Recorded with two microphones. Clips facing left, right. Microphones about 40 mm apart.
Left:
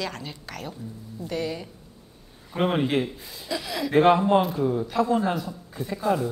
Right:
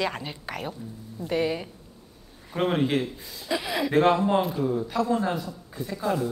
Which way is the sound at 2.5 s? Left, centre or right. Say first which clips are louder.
Left 1 dB; centre.